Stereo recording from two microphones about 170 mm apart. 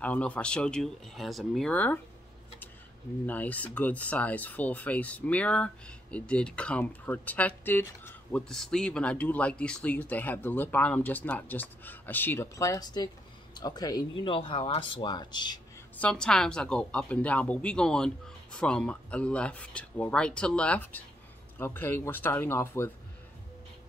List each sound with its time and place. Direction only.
0.0 s speech: 10° left (ahead or behind)
3.3 s speech: 10° left (ahead or behind); by 15.6 s 25° left (ahead or behind)
16.0 s speech: 5° left (ahead or behind)